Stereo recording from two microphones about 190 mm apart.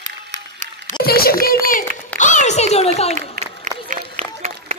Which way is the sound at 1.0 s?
55° left (ahead or behind).